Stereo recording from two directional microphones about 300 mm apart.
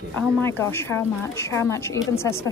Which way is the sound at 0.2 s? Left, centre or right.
Centre.